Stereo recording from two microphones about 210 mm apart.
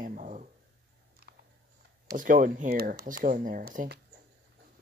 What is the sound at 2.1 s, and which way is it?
Speech, 40° right (ahead or behind).